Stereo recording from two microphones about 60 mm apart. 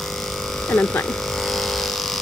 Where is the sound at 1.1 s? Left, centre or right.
Centre.